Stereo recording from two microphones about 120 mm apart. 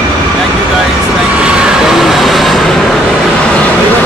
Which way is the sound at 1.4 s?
10° right (ahead or behind).